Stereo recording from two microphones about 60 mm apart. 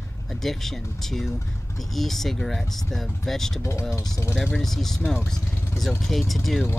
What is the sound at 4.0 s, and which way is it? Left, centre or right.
Speech, left.